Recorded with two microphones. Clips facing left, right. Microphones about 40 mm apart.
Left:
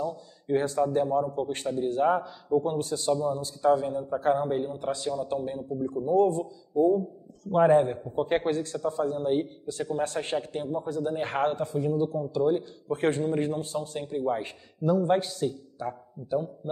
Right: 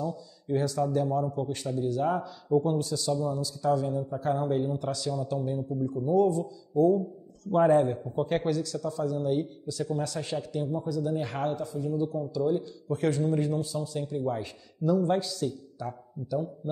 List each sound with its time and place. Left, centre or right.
0.0 s a man's voice: left
4.5 s a man's voice: centre; by 6.4 s left
6.7 s speech: centre
7.4 s a man's voice: left
15.1 s a man's voice: left